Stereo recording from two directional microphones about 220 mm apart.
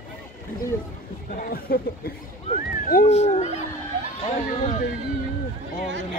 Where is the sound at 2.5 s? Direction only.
35° left (ahead or behind).